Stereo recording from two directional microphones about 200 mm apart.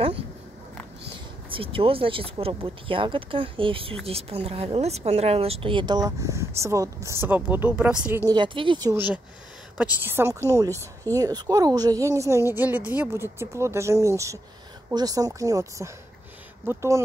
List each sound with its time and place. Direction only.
1.5 s a woman's voice: 25° right (ahead or behind); by 8.2 s 5° right (ahead or behind)
8.3 s a woman's voice: 25° right (ahead or behind)